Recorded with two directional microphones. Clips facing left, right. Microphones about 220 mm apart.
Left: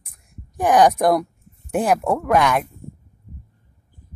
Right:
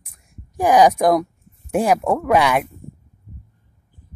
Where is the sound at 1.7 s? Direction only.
Centre (ahead or behind).